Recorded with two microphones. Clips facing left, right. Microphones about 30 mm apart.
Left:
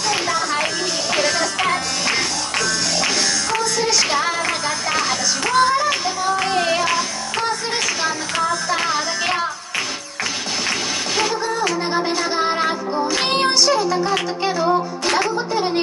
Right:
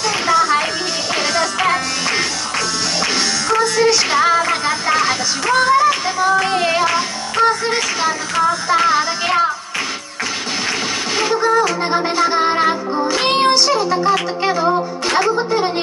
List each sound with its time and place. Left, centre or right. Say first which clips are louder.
0.3 s music: right 6 dB; right
3.0 s music: right 2 dB; centre
11.1 s music: right 7 dB; right
13.2 s child singing: right 6 dB; centre
13.6 s music: right 1 dB; right
15.5 s a sound: right 3 dB; centre